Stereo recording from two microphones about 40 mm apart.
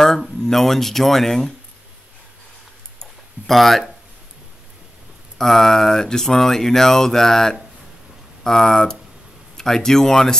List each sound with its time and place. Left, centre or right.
0.4 s speech: centre
3.0 s a sound: centre
5.4 s speech: centre